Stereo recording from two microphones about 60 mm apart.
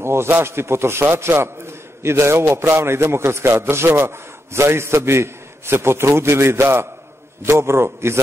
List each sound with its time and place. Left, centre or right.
0.0 s a man's voice: right